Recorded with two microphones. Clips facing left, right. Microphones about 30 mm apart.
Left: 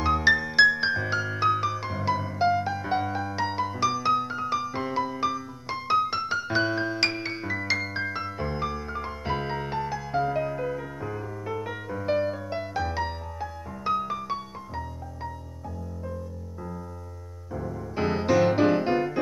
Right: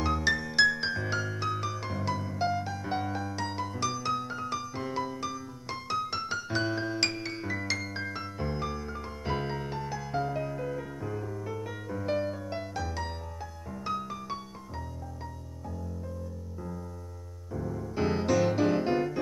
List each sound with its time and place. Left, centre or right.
0.0 s music: left
17.5 s music: centre